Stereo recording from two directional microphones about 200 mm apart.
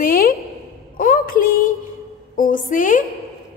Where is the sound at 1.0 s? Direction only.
45° left (ahead or behind).